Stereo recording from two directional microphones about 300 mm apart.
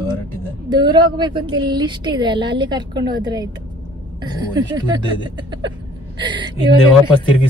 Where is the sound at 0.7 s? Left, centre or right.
Centre.